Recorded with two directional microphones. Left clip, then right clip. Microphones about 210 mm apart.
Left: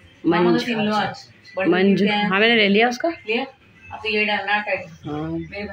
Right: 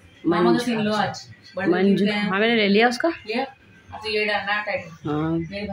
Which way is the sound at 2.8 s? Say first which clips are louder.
Even; 15° right (ahead or behind).